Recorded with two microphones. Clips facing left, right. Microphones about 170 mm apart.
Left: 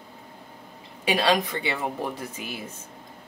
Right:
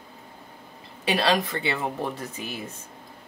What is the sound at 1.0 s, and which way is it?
Speech, 15° left (ahead or behind).